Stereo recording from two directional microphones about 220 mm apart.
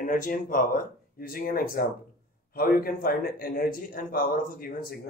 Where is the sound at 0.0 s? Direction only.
35° left (ahead or behind).